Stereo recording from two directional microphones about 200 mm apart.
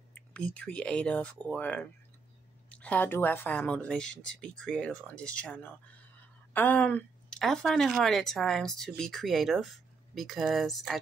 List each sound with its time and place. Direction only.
0.1 s speech: 5° left (ahead or behind)